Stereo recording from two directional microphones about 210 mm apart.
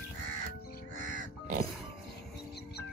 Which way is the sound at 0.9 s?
40° right (ahead or behind).